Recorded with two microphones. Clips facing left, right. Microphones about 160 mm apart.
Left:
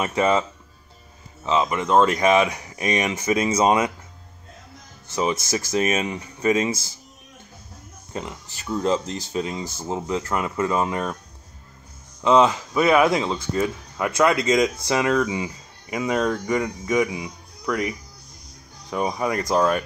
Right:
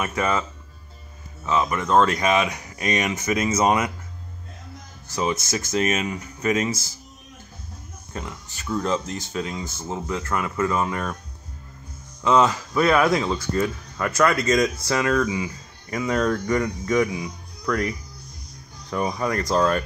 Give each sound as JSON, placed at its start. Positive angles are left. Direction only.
{"t": 0.0, "sound": "speech", "side_deg": 25}
{"t": 5.0, "sound": "speech", "side_deg": 25}
{"t": 8.1, "sound": "speech", "side_deg": 25}
{"t": 9.3, "sound": "speech", "side_deg": 20}
{"t": 9.6, "sound": "speech", "side_deg": 35}
{"t": 9.8, "sound": "speech", "side_deg": 20}
{"t": 12.2, "sound": "speech", "side_deg": 15}